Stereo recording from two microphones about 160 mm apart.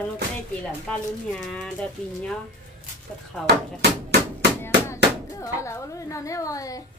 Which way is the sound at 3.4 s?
90° right.